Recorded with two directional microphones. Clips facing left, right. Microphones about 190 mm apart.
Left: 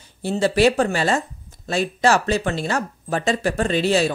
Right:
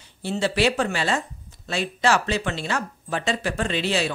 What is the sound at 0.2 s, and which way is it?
Speech, 45° left (ahead or behind).